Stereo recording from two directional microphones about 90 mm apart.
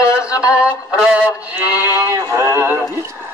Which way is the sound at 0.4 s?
10° right (ahead or behind).